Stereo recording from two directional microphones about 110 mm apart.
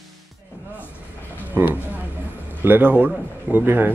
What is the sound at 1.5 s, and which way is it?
A man's voice, 15° right (ahead or behind).